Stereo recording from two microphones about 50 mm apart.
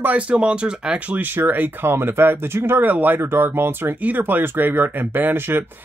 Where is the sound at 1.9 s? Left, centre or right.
Right.